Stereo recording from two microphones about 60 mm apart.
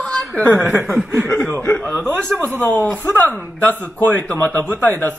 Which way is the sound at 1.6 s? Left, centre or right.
Left.